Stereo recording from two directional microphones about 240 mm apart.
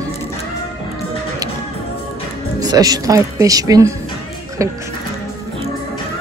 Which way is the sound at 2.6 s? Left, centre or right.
Centre.